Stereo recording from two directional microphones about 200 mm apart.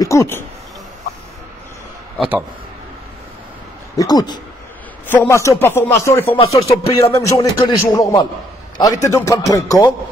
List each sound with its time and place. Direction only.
0.0 s speech: 15° left (ahead or behind)
2.1 s speech: 5° right (ahead or behind)
3.9 s a man's voice: 20° left (ahead or behind)